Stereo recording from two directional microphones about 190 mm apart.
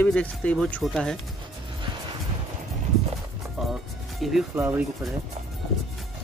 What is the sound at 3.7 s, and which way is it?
Music, centre (ahead or behind).